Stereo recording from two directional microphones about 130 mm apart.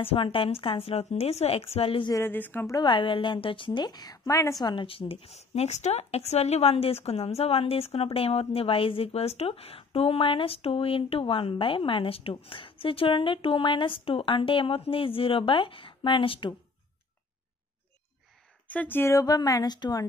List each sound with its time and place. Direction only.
0.0 s a woman's voice: 45° left (ahead or behind)
2.2 s a woman's voice: 15° left (ahead or behind)
2.8 s a woman's voice: 40° left (ahead or behind)
18.7 s a woman's voice: 15° left (ahead or behind); by 20.1 s 30° left (ahead or behind)